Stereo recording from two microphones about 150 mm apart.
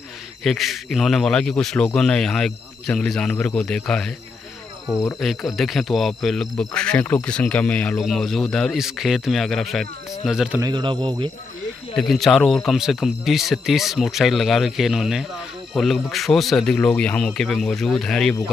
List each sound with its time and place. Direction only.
0.4 s speech: centre (ahead or behind)
5.2 s speech: centre (ahead or behind)
10.6 s speech: 30° right (ahead or behind)
12.0 s speech: centre (ahead or behind)